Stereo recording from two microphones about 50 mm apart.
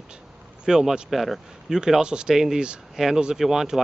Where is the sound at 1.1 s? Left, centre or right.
Centre.